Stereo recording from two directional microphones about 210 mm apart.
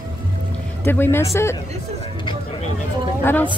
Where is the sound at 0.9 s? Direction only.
10° left (ahead or behind).